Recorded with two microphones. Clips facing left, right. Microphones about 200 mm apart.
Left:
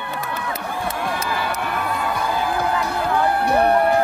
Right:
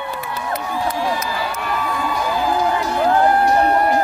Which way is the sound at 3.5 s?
60° left (ahead or behind).